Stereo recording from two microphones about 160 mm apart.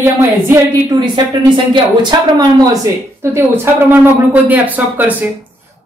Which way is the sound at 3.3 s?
15° right (ahead or behind).